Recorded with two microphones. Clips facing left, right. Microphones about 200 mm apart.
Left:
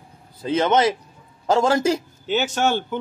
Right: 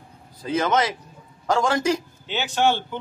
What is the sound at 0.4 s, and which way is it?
A man's voice, 25° left (ahead or behind).